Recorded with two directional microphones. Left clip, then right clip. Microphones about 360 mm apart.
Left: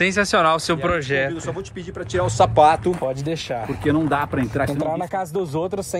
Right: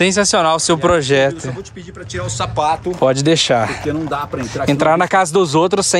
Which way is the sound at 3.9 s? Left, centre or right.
Centre.